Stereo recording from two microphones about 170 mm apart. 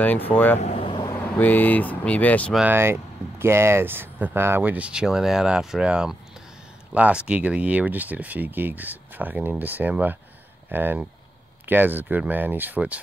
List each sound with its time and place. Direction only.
0.0 s speech: 10° left (ahead or behind)
0.6 s vehicle: 35° left (ahead or behind)
1.0 s speech: 10° left (ahead or behind)
2.6 s speech: 15° right (ahead or behind)